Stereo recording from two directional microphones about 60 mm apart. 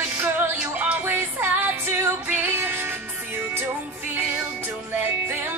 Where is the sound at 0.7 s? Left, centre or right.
Right.